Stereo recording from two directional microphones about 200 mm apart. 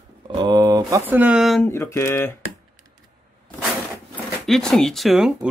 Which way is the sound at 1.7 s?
15° left (ahead or behind).